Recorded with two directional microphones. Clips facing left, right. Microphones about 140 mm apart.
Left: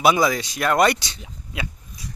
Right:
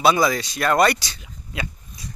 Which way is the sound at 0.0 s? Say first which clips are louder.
Even; 15° left (ahead or behind).